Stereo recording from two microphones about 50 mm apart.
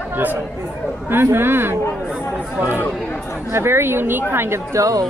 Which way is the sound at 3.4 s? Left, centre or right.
Right.